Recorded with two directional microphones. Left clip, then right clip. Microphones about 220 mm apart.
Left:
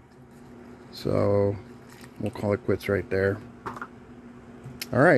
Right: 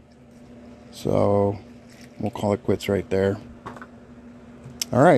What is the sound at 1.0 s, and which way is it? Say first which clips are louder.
Speech: right 3 dB; 15° right (ahead or behind).